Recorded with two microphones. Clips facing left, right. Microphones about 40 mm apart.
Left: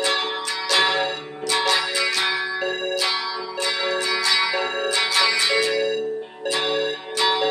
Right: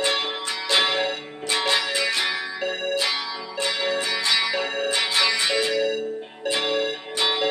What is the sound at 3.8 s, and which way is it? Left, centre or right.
Music, right.